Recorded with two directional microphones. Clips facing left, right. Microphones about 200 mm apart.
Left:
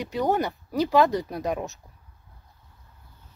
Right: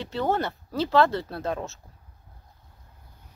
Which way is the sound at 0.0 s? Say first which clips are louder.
Left 2 dB; 15° left (ahead or behind).